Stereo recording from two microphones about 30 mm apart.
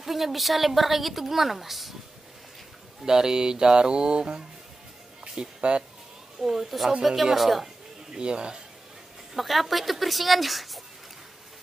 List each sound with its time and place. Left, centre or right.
0.0 s a woman's voice: centre
3.1 s speech: right
6.4 s speech: centre
7.3 s a woman's voice: centre
8.1 s speech: right
9.3 s a woman's voice: centre